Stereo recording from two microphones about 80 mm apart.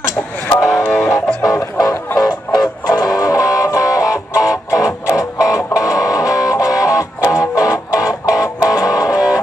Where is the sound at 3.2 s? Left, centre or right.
Left.